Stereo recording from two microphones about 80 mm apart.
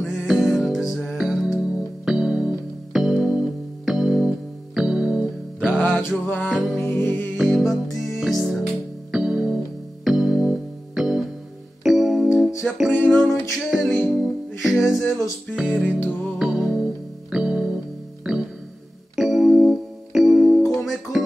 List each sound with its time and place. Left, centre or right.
0.0 s music: centre
5.7 s music: left
6.5 s music: centre
6.8 s music: left
7.3 s music: centre
12.9 s music: left
13.7 s music: centre